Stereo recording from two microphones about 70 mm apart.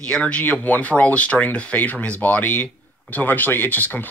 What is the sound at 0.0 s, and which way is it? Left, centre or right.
Speech, centre.